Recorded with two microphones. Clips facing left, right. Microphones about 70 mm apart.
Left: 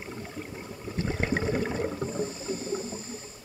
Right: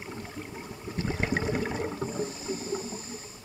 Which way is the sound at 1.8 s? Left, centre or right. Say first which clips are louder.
Left 1 dB; centre.